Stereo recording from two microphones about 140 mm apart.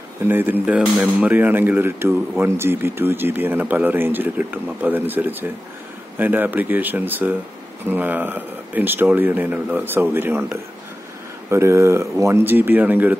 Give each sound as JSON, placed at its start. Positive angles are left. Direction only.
{"t": 0.2, "sound": "speech", "side_deg": -15}